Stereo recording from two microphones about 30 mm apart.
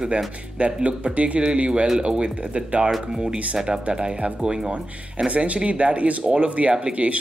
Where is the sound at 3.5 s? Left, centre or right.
Right.